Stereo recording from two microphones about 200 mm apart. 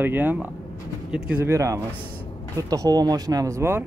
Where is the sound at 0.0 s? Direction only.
10° right (ahead or behind).